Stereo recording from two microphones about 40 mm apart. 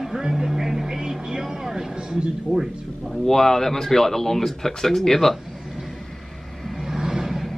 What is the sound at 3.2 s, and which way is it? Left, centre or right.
Speech, centre.